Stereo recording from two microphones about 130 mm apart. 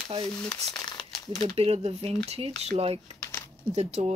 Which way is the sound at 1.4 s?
50° right (ahead or behind).